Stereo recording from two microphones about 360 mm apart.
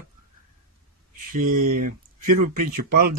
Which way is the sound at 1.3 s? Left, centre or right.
Right.